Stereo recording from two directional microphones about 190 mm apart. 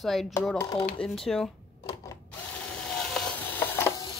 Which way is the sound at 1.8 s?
15° left (ahead or behind).